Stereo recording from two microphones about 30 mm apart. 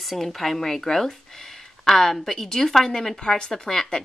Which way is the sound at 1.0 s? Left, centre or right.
Centre.